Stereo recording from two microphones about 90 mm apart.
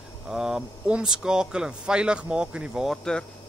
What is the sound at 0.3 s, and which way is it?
Speech, 5° right (ahead or behind).